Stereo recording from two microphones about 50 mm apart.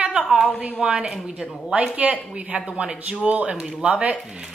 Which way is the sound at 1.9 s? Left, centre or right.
Right.